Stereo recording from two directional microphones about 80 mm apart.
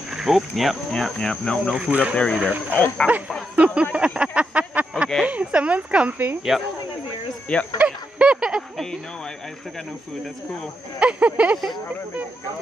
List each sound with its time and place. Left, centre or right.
0.1 s speech: centre
1.8 s speech: centre
2.1 s speech: centre
3.5 s speech: centre
6.5 s speech: centre
7.5 s speech: centre
7.8 s a sound: centre
11.0 s speech: centre